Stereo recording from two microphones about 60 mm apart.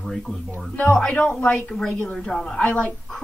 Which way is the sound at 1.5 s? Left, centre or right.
Centre.